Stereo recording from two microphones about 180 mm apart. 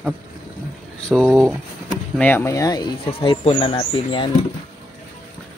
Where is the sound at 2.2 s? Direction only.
10° left (ahead or behind); by 4.3 s 30° left (ahead or behind).